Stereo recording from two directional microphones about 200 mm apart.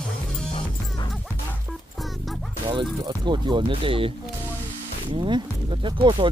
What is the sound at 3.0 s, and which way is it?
Speech, 25° right (ahead or behind).